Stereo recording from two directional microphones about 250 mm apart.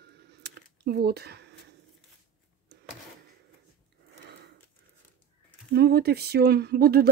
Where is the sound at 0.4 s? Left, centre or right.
Right.